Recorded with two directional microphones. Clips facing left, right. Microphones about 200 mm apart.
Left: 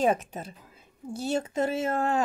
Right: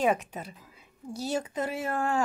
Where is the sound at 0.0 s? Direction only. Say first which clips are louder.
Left 1 dB; 45° left (ahead or behind).